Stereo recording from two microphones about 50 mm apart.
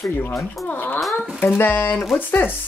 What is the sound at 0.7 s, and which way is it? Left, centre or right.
Speech, left.